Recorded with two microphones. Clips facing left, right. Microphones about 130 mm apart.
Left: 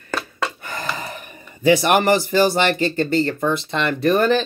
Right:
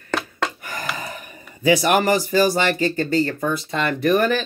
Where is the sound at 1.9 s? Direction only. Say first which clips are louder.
Left 1 dB; 25° left (ahead or behind).